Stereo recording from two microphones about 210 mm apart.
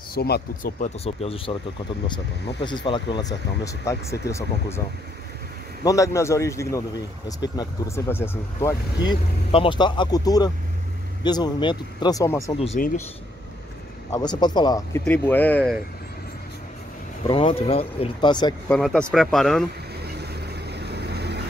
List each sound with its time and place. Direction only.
0.1 s speech: 45° left (ahead or behind); by 1.6 s 25° left (ahead or behind)
2.6 s speech: 20° left (ahead or behind)
5.9 s speech: 15° left (ahead or behind)
12.5 s speech: 30° left (ahead or behind)
14.1 s speech: 20° left (ahead or behind)
15.0 s speech: 10° left (ahead or behind)
17.2 s speech: 25° left (ahead or behind)
18.7 s speech: centre (ahead or behind)
20.0 s vehicle: 50° right (ahead or behind)